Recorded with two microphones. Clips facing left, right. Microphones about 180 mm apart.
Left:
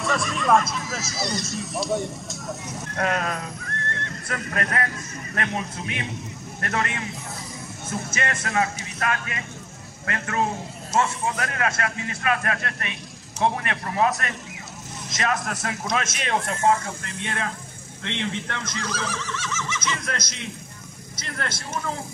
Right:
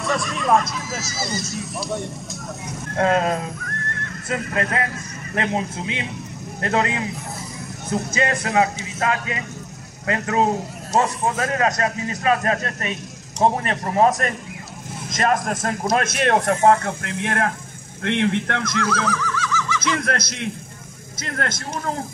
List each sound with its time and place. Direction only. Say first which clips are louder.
0.0 s speech: right 1 dB; centre (ahead or behind)
3.0 s speech: right 7 dB; 25° right (ahead or behind)
8.1 s a man's voice: right 6 dB; 15° right (ahead or behind); by 19.0 s 60° right (ahead or behind)
19.0 s a sound: right 6 dB; 25° left (ahead or behind)
19.8 s a man's voice: right 7 dB; 60° right (ahead or behind)